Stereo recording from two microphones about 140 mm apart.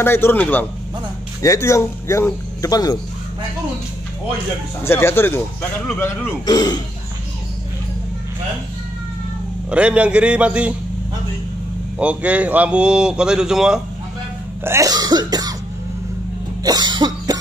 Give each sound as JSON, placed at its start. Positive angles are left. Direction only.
{"t": 0.0, "sound": "speech", "side_deg": 15}
{"t": 4.8, "sound": "speech", "side_deg": 15}
{"t": 6.4, "sound": "speech", "side_deg": 30}
{"t": 9.7, "sound": "speech", "side_deg": -10}
{"t": 12.0, "sound": "speech", "side_deg": -10}
{"t": 14.6, "sound": "cough", "side_deg": -20}
{"t": 16.6, "sound": "cough", "side_deg": -30}